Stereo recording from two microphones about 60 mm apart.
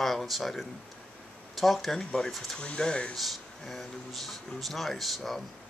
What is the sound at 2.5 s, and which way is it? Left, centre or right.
Speech, centre.